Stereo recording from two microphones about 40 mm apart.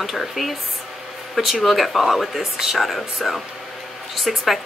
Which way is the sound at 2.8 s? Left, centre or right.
Centre.